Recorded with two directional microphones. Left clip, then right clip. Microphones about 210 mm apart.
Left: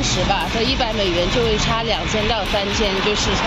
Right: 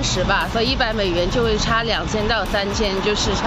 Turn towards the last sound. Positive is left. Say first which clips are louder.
# left 1 dB
turn(degrees=-10)  # may be behind; listen again after turning